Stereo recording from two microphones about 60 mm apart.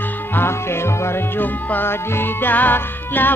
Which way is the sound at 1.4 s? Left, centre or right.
Left.